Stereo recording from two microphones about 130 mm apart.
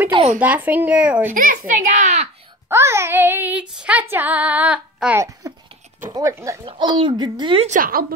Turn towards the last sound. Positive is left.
turn(degrees=-65)  # may be behind; listen again after turning